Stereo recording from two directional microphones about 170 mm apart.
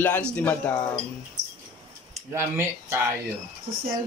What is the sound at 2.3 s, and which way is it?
Speech, 15° right (ahead or behind).